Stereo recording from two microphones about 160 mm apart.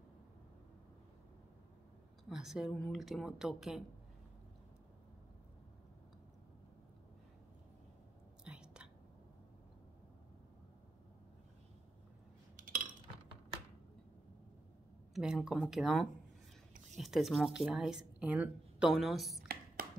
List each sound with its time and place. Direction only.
2.2 s speech: 5° right (ahead or behind)
8.5 s whispering: 5° right (ahead or behind)
12.5 s cutlery: 55° right (ahead or behind)
15.1 s speech: 5° right (ahead or behind)
19.4 s a sound: 65° right (ahead or behind)